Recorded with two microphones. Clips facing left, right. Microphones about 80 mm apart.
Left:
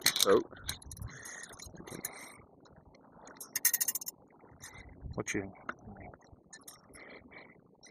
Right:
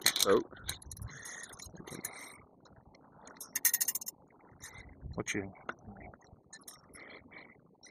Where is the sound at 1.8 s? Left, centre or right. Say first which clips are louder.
Left 1 dB; centre.